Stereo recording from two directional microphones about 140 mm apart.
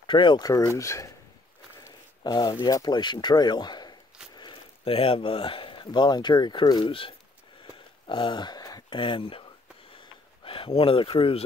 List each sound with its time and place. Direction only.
0.0 s speech: 35° left (ahead or behind)
1.8 s a sound: 30° left (ahead or behind)
2.6 s speech: 30° left (ahead or behind)
10.4 s speech: 40° left (ahead or behind)